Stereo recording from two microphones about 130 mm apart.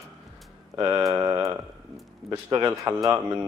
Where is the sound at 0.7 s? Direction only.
30° right (ahead or behind).